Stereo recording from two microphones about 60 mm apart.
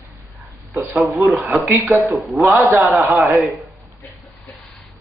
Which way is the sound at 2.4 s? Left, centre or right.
Right.